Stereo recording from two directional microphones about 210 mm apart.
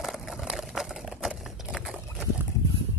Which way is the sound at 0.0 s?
Centre (ahead or behind).